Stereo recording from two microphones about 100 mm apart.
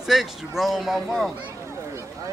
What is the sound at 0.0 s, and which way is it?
Speech, 5° right (ahead or behind).